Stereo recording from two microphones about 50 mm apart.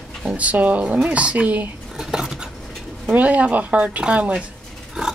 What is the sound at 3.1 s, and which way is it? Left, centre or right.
Speech, right.